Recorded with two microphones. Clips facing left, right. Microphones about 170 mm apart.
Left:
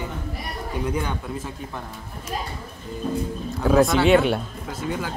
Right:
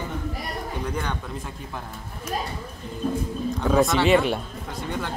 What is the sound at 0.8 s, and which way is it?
Speech, 5° left (ahead or behind).